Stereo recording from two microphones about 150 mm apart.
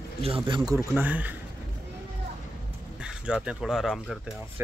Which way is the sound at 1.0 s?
10° right (ahead or behind).